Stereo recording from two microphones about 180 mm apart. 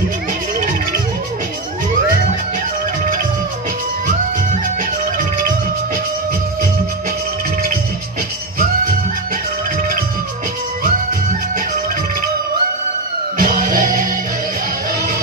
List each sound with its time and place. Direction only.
13.4 s music: 50° right (ahead or behind)